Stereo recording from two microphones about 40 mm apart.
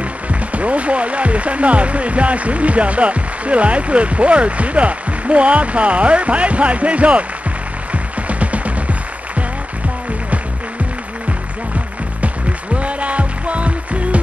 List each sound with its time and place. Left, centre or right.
0.3 s speech: right
7.9 s music: right
12.7 s music: right